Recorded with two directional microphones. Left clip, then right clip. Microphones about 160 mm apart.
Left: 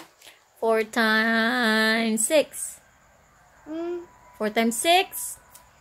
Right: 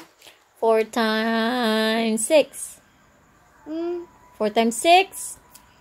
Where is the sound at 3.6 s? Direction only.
Centre (ahead or behind).